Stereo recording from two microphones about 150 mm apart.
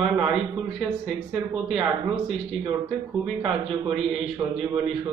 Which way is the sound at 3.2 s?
Centre (ahead or behind).